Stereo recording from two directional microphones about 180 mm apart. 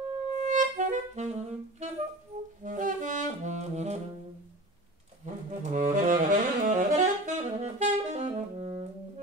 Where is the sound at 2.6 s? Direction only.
45° right (ahead or behind).